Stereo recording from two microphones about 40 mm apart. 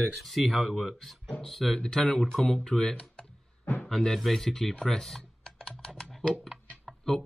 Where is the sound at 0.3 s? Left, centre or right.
Centre.